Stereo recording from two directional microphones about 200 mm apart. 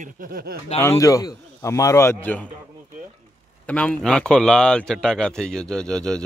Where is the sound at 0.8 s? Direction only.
15° left (ahead or behind).